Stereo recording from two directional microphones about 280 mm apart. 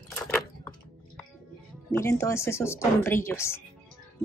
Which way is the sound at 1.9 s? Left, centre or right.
Centre.